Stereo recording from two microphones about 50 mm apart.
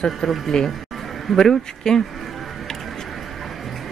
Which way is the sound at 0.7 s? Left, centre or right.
Centre.